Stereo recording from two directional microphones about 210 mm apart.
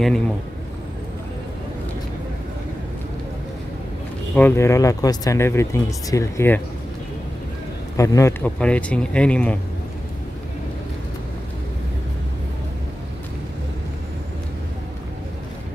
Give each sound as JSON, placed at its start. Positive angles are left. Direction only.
{"t": 4.4, "sound": "speech", "side_deg": 10}
{"t": 8.0, "sound": "a man's voice", "side_deg": 15}